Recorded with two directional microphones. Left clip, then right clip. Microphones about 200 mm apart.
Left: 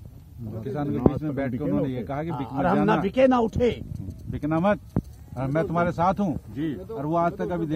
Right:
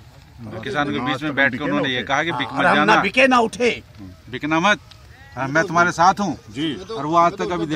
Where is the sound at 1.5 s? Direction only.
25° left (ahead or behind).